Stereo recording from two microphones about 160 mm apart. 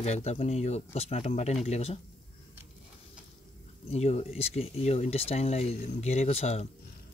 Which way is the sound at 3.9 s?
40° left (ahead or behind).